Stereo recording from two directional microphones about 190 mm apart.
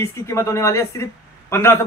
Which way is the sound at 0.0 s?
15° left (ahead or behind).